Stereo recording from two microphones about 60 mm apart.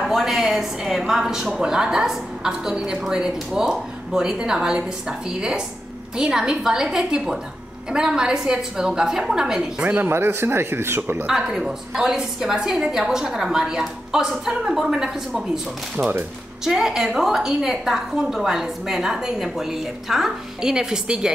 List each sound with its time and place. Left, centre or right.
0.0 s a woman's voice: centre
10.0 s speech: right
11.2 s a woman's voice: centre
16.0 s speech: right
16.6 s a woman's voice: centre